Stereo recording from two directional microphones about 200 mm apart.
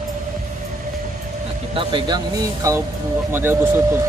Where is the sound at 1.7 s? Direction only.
20° right (ahead or behind).